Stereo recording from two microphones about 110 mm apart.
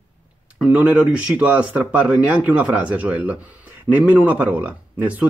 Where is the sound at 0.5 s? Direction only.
10° right (ahead or behind).